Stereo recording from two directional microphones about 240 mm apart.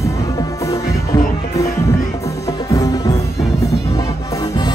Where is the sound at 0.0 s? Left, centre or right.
Centre.